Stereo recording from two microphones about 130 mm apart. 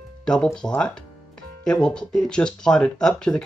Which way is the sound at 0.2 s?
5° left (ahead or behind).